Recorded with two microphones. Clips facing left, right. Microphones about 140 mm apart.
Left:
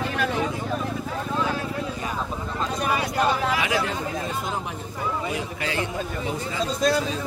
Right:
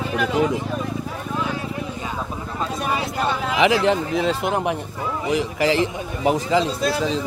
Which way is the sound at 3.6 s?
80° right.